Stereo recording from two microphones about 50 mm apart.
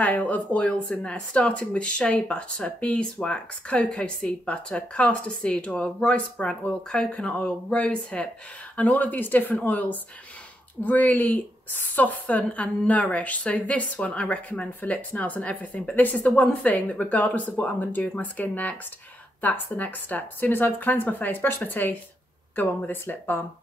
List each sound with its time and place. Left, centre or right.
0.0 s speech: left
0.7 s a woman's voice: centre
8.7 s a woman's voice: left